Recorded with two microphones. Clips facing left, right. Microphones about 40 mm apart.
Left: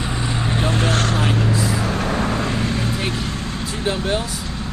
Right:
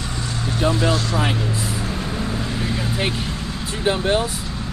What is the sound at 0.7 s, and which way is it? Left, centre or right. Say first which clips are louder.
Speech: right 2 dB; left.